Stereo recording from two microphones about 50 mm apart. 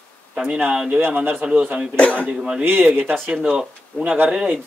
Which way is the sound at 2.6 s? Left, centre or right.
Right.